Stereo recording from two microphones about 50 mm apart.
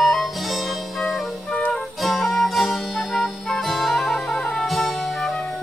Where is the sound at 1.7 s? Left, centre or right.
Centre.